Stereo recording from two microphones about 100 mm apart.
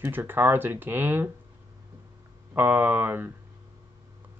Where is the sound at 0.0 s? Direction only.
20° right (ahead or behind).